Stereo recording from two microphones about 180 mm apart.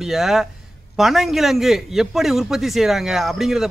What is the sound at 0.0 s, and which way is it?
A man's voice, centre (ahead or behind).